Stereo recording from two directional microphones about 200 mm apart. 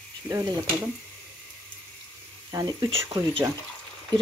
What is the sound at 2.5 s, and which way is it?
Speech, 20° right (ahead or behind).